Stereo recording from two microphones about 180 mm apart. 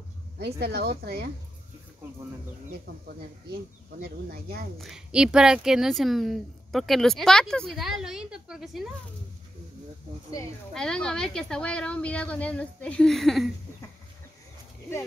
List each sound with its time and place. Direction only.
0.4 s speech: 65° right (ahead or behind)
4.7 s speech: centre (ahead or behind)
10.7 s speech: 5° left (ahead or behind)